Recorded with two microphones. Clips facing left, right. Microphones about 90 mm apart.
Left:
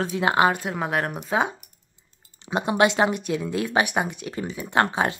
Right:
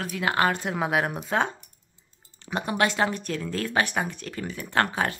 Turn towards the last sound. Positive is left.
turn(degrees=20)  # may be behind; listen again after turning